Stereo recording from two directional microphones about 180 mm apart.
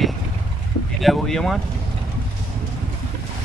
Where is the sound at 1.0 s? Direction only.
Centre (ahead or behind).